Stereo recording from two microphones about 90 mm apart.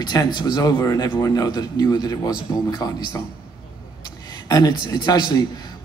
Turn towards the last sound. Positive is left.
turn(degrees=50)  # may be behind; listen again after turning